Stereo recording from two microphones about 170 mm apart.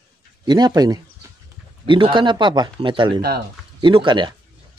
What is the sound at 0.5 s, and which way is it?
Speech, 25° right (ahead or behind).